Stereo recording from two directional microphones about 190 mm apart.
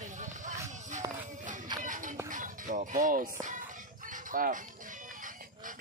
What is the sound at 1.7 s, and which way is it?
Music, 45° right (ahead or behind).